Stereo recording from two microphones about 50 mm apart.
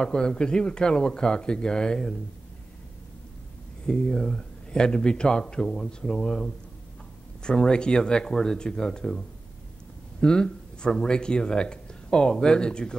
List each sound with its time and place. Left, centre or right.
0.0 s speech: centre
3.8 s speech: centre
10.2 s speech: centre